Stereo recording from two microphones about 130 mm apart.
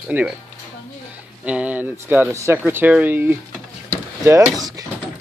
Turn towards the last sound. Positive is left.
turn(degrees=-30)  # may be behind; listen again after turning